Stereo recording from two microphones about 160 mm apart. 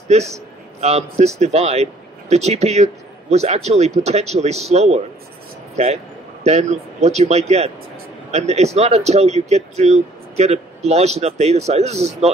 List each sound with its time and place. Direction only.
0.1 s speech: 40° right (ahead or behind)
6.4 s speech: 45° right (ahead or behind)